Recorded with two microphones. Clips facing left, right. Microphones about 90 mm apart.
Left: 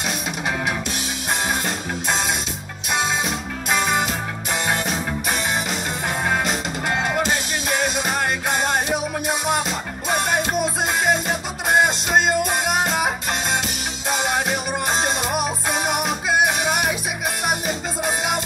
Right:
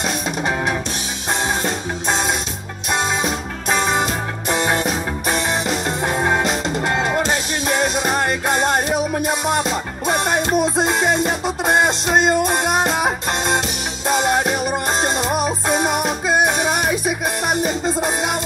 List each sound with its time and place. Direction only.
0.0 s music: 40° right (ahead or behind)
3.6 s music: 30° right (ahead or behind)
6.0 s music: 35° right (ahead or behind)
18.0 s music: 40° right (ahead or behind)